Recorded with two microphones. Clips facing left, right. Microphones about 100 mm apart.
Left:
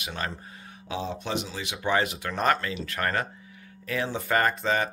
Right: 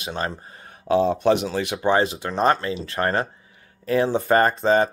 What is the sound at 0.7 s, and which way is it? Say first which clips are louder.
Speech: right 13 dB; 50° right (ahead or behind).